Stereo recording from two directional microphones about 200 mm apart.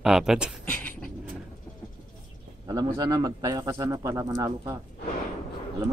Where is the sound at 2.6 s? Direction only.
20° right (ahead or behind).